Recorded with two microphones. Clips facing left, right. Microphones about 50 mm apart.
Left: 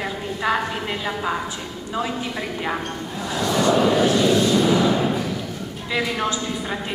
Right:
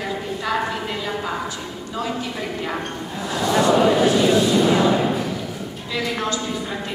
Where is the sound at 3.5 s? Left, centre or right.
Centre.